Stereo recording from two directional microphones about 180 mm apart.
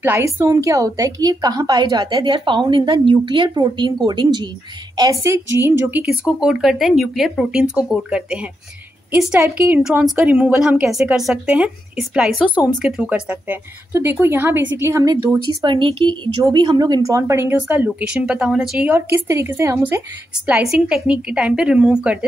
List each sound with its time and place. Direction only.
0.0 s a woman's voice: 10° right (ahead or behind)
15.6 s a woman's voice: 25° right (ahead or behind)
20.4 s a woman's voice: 5° right (ahead or behind)